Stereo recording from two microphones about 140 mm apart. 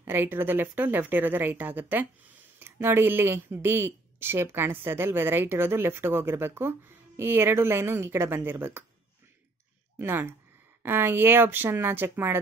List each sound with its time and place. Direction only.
0.0 s speech: 15° right (ahead or behind)
9.9 s speech: 15° right (ahead or behind)